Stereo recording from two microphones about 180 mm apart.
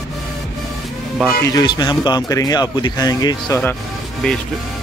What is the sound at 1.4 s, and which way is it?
Speech, 20° left (ahead or behind).